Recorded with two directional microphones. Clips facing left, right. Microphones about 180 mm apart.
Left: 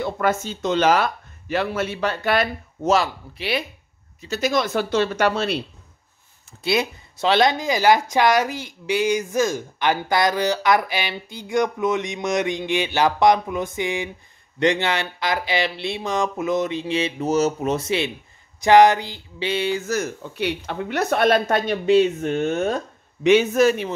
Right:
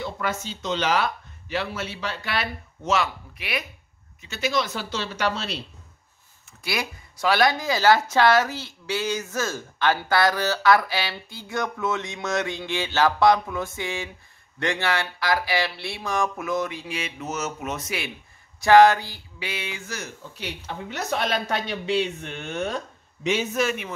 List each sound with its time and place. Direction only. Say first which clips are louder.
0.0 s speech: left 7 dB; 50° left (ahead or behind); by 3.6 s 30° left (ahead or behind)
4.2 s speech: left 4 dB; 40° left (ahead or behind)
6.6 s speech: left 8 dB; 25° left (ahead or behind); by 20.1 s 40° left (ahead or behind)
20.3 s a man's voice: left 9 dB; 65° left (ahead or behind); by 23.9 s 40° left (ahead or behind)